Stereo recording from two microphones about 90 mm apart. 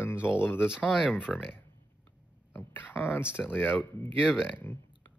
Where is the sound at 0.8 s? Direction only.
10° right (ahead or behind).